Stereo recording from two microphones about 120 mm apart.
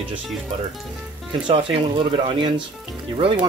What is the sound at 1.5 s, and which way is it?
Speech, 45° right (ahead or behind).